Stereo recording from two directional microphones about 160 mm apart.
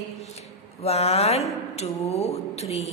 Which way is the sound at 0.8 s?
40° left (ahead or behind).